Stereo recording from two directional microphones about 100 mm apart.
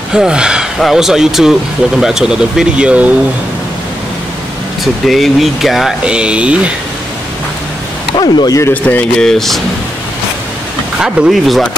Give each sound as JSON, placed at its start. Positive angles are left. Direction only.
{"t": 0.1, "sound": "speech", "side_deg": -10}
{"t": 5.0, "sound": "speech", "side_deg": 0}
{"t": 8.2, "sound": "speech", "side_deg": 45}
{"t": 8.8, "sound": "speech", "side_deg": 10}
{"t": 11.0, "sound": "speech", "side_deg": -5}